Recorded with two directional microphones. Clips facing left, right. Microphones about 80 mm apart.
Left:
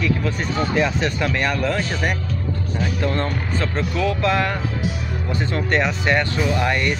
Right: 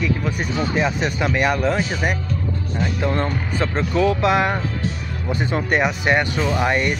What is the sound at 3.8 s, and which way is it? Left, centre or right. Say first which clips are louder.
Speech: right 4 dB; right.